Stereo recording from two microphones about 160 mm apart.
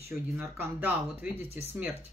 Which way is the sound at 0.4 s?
10° right (ahead or behind).